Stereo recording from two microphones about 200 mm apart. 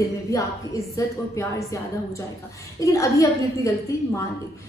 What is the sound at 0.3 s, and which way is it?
A woman's voice, 15° left (ahead or behind).